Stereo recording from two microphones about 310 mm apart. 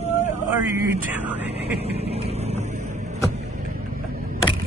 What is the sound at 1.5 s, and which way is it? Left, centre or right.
Vehicle, centre.